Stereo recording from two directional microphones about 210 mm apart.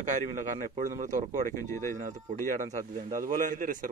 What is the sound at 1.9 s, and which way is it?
Speech, 40° right (ahead or behind).